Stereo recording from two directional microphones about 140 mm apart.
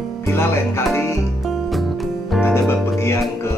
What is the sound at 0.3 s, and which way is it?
Speech, 15° left (ahead or behind).